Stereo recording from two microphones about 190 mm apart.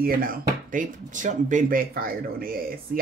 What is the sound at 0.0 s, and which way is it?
Speech, 50° right (ahead or behind).